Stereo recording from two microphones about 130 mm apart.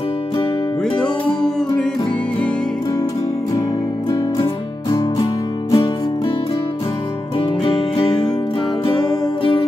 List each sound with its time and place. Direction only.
5.2 s music: 25° left (ahead or behind)
8.8 s music: 40° left (ahead or behind)